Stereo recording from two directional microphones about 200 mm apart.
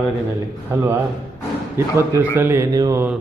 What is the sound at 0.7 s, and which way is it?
Mantra, 15° right (ahead or behind).